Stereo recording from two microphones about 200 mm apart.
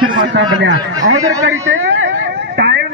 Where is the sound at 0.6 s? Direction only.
65° right (ahead or behind).